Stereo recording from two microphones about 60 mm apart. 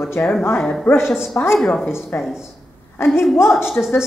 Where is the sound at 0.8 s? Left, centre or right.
Left.